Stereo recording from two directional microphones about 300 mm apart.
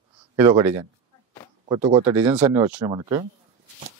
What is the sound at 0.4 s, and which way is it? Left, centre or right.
Speech, centre.